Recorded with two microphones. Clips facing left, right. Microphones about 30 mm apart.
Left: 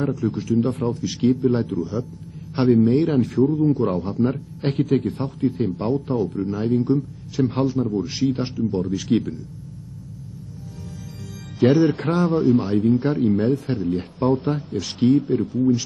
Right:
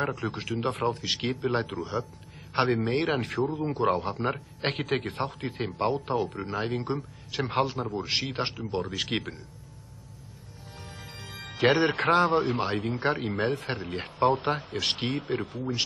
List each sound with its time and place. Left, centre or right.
0.1 s speech: right
2.6 s a man's voice: right
3.0 s speech: right
11.6 s speech: right